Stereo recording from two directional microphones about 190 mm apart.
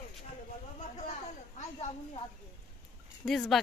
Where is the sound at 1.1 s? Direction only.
35° left (ahead or behind).